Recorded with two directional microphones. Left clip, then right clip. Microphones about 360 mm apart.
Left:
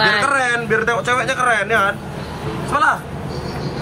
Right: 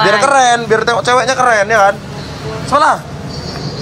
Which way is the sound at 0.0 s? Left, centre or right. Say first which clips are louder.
Right 6 dB; centre.